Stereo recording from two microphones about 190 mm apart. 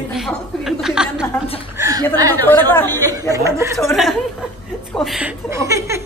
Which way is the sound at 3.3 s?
15° right (ahead or behind).